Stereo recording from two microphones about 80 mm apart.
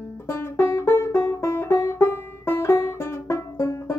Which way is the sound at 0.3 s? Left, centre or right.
Left.